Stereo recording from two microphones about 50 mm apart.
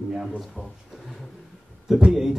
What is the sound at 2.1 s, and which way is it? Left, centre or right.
Speech, centre.